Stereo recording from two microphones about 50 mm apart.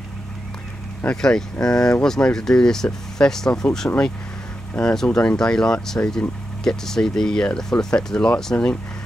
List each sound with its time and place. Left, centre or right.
1.1 s speech: centre
3.8 s speech: left
4.9 s speech: centre
8.5 s speech: left